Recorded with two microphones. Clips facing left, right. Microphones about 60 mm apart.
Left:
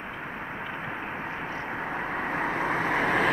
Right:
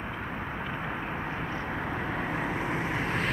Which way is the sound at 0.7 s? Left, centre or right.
Centre.